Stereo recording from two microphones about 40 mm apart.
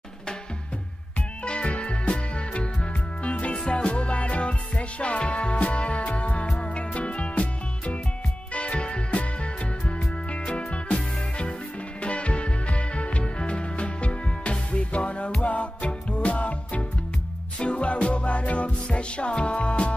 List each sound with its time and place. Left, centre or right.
1.4 s music: left